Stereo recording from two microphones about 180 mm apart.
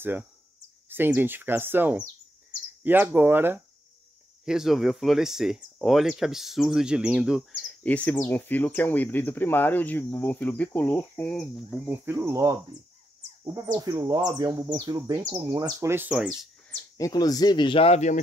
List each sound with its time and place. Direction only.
0.8 s speech: 10° right (ahead or behind)
16.9 s speech: 20° left (ahead or behind); by 18.2 s 40° left (ahead or behind)